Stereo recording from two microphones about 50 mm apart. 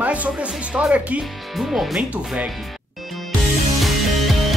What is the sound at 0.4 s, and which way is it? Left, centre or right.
Speech, right.